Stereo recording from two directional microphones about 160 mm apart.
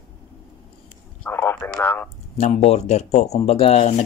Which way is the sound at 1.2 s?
15° left (ahead or behind).